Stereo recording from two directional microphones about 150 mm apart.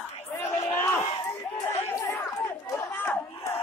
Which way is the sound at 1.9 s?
20° left (ahead or behind).